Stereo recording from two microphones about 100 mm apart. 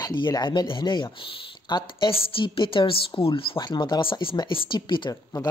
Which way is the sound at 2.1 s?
65° left (ahead or behind).